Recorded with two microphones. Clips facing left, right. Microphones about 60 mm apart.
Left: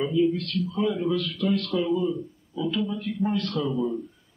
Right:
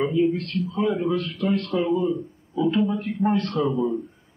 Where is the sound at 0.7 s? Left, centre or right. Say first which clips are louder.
Right 2 dB; right.